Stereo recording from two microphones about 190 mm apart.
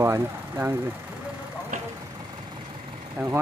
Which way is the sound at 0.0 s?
15° right (ahead or behind).